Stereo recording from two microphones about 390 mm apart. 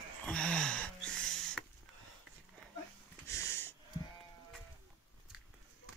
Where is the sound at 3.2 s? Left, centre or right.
Centre.